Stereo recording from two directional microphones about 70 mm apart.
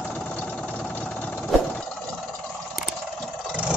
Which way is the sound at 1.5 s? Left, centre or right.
Centre.